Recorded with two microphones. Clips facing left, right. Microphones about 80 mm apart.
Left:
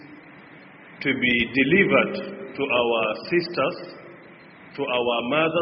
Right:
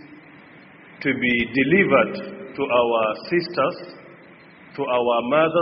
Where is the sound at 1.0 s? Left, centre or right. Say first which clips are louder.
Right 2 dB; right.